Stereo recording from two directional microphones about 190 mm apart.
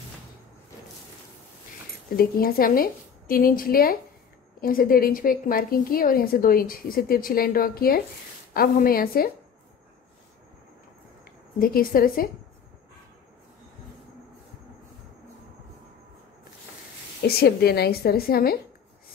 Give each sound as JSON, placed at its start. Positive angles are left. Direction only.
{"t": 2.1, "sound": "a woman's voice", "side_deg": 50}
{"t": 11.6, "sound": "a woman's voice", "side_deg": 50}
{"t": 17.2, "sound": "a woman's voice", "side_deg": 60}